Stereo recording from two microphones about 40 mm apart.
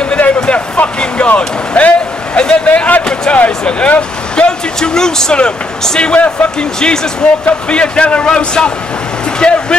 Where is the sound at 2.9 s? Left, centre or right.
Left.